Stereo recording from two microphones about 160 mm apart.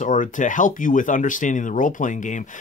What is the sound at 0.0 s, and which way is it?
Speech, 55° left (ahead or behind).